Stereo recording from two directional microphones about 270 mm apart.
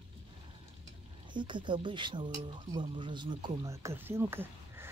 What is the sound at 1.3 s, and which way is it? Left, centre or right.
Speech, centre.